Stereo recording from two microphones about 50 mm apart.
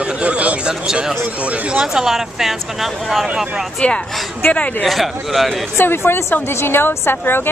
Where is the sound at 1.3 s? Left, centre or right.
Right.